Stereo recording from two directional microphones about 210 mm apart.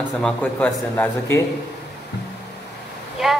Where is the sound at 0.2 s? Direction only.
5° left (ahead or behind).